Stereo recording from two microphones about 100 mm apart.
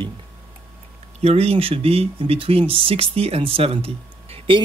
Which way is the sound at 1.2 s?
90° right.